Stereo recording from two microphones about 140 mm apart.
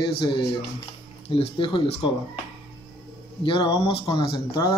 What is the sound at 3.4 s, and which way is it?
Speech, 35° left (ahead or behind).